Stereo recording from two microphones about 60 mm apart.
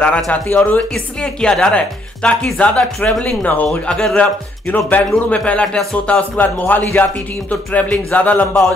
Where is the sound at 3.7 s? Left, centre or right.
Centre.